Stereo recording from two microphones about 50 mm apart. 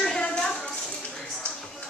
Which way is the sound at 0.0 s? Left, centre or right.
Centre.